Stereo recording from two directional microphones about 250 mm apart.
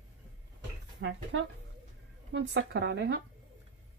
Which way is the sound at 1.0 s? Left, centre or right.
Right.